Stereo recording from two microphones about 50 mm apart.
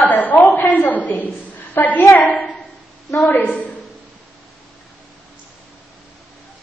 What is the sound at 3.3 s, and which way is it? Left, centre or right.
Speech, left.